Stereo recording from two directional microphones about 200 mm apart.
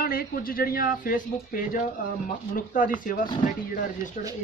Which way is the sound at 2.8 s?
40° left (ahead or behind).